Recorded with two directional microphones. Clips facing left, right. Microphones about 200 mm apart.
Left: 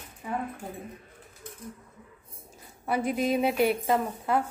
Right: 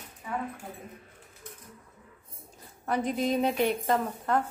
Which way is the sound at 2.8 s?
10° left (ahead or behind).